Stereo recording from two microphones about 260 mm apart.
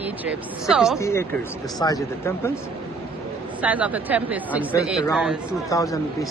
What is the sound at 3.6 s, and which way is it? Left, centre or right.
Speech, centre.